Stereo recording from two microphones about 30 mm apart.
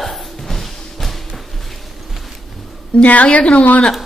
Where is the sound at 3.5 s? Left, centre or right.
Left.